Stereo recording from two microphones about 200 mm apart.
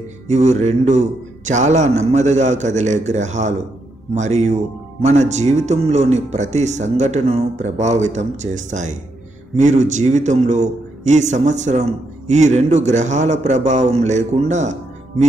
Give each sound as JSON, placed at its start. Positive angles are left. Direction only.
{"t": 0.3, "sound": "a man's voice", "side_deg": -35}